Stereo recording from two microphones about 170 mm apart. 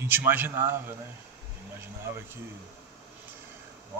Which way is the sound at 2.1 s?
15° right (ahead or behind).